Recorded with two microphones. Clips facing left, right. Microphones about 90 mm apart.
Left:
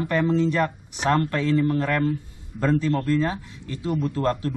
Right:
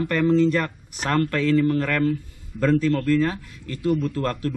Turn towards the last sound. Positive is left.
turn(degrees=20)  # may be behind; listen again after turning